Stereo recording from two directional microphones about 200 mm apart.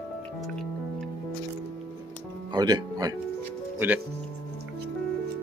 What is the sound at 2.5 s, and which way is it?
Speech, 20° right (ahead or behind).